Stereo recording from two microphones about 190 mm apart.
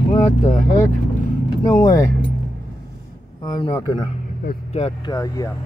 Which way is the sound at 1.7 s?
20° left (ahead or behind).